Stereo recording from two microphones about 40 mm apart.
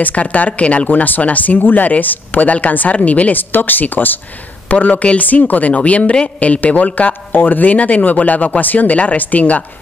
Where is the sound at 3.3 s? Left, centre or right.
Left.